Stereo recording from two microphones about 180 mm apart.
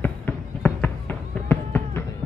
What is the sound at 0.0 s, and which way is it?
Fireworks, 10° left (ahead or behind).